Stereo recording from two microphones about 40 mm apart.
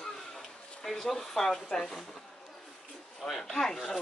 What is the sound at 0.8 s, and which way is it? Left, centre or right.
Speech, centre.